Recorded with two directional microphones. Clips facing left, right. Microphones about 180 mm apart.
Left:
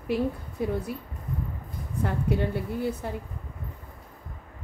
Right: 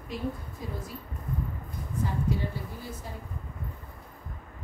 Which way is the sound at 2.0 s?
65° left (ahead or behind).